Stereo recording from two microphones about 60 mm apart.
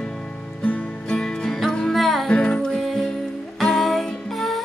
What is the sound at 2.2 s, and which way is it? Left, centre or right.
Music, centre.